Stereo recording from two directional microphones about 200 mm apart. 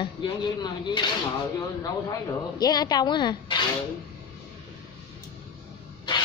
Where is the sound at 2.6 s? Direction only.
20° left (ahead or behind).